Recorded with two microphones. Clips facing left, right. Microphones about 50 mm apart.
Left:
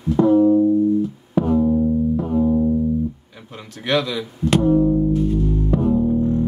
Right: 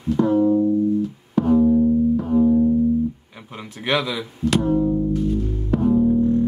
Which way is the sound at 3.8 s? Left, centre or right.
Centre.